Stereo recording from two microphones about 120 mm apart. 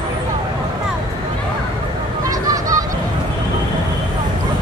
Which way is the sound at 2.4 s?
30° right (ahead or behind).